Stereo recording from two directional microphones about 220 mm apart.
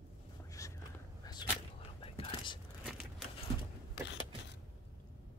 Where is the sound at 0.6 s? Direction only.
15° left (ahead or behind).